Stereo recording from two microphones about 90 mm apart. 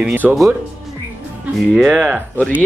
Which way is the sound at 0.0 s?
15° right (ahead or behind).